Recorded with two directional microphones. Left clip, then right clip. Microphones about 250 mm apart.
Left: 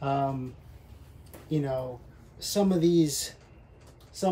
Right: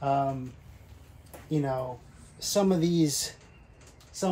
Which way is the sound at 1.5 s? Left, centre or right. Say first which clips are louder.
Even; centre.